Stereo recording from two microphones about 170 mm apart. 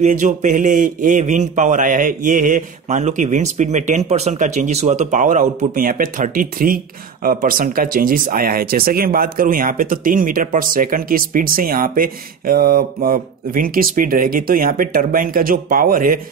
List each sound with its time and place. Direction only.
0.0 s a man's voice: 50° right (ahead or behind)